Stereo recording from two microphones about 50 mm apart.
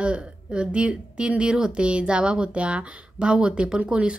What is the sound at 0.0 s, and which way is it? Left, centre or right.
A woman's voice, right.